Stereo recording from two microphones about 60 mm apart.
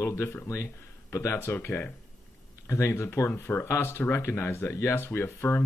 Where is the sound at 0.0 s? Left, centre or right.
Left.